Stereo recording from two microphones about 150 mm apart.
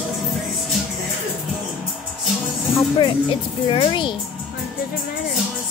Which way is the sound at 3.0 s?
35° left (ahead or behind).